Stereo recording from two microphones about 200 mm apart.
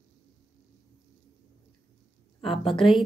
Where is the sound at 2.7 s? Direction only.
Centre (ahead or behind).